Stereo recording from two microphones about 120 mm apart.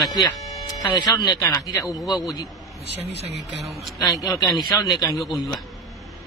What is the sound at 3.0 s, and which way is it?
Speech, 60° right (ahead or behind).